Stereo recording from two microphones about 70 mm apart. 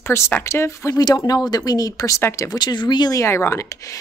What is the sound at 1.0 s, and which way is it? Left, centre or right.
Speech, left.